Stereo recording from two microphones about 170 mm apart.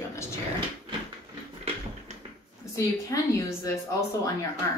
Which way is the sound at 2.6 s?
20° left (ahead or behind).